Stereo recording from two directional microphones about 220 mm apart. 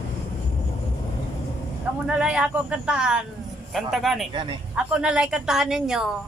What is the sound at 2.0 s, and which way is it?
A man's voice, 5° right (ahead or behind).